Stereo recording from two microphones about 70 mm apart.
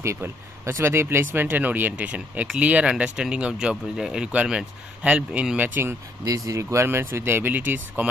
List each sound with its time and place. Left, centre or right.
0.0 s speech: right; by 5.7 s centre
6.2 s speech: right